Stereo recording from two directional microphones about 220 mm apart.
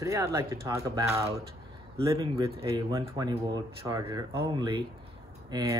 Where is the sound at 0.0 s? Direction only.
15° right (ahead or behind).